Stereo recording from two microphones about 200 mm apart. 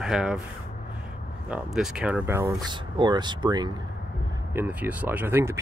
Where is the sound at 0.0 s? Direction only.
5° right (ahead or behind).